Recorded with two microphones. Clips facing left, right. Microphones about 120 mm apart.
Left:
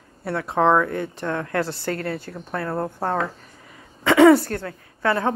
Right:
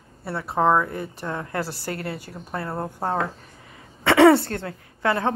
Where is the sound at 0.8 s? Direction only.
70° left (ahead or behind).